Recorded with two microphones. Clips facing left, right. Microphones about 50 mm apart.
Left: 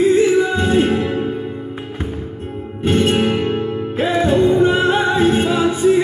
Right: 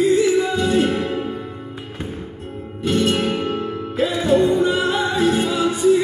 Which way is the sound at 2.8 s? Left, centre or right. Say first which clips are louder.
Left 3 dB; left.